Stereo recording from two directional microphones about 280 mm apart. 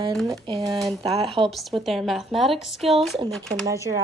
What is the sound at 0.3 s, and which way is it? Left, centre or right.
Speech, centre.